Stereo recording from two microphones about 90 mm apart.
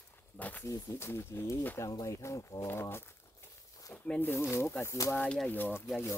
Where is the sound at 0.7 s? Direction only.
30° left (ahead or behind).